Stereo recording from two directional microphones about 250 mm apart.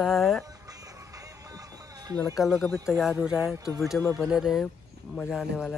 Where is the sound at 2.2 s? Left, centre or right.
Centre.